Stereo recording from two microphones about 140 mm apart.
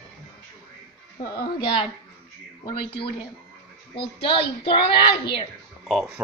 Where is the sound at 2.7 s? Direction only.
35° left (ahead or behind).